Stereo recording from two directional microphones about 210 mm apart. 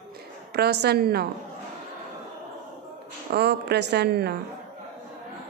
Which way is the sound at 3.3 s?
50° right (ahead or behind).